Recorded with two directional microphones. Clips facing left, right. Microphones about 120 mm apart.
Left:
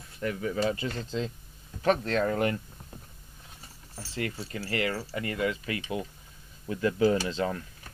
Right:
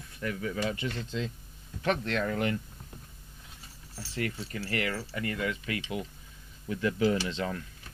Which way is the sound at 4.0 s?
30° left (ahead or behind).